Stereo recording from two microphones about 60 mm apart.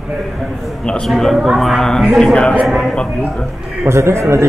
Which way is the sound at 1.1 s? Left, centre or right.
Centre.